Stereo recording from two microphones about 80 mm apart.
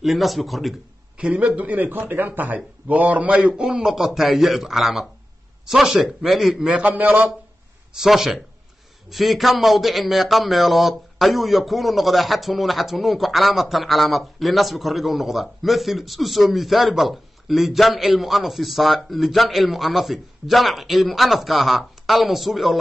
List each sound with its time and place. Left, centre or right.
0.0 s a man's voice: centre
1.1 s a man's voice: centre
6.7 s a man's voice: centre
7.9 s a man's voice: centre